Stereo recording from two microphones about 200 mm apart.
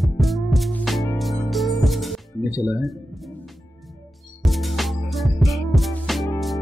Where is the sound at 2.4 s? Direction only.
15° left (ahead or behind).